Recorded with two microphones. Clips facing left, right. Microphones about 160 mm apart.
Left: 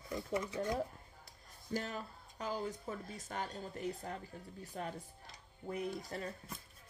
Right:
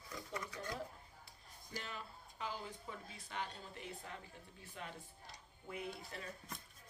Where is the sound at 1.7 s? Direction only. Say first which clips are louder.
Left 8 dB; 45° left (ahead or behind).